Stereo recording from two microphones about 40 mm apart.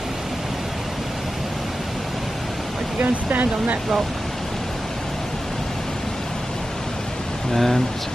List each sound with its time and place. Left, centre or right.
3.0 s speech: right
7.5 s speech: centre